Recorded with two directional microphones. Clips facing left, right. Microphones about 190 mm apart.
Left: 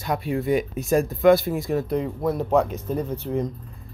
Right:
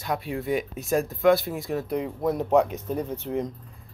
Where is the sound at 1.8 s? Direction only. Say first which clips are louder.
Left 2 dB; 15° right (ahead or behind).